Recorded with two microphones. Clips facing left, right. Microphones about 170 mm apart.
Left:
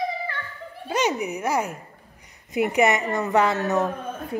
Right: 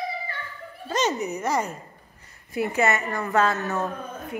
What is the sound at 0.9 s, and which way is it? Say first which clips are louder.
A woman's voice: left 1 dB; 10° left (ahead or behind).